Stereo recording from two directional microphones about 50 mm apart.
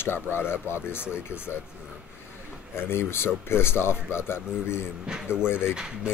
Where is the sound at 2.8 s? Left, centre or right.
Left.